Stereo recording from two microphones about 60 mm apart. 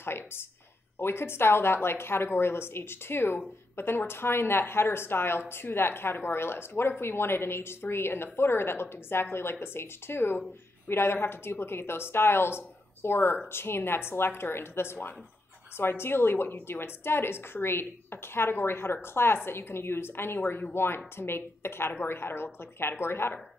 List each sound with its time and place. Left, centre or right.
0.0 s a woman's voice: left